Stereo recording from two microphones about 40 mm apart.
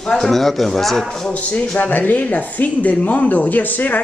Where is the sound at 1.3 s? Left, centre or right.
Left.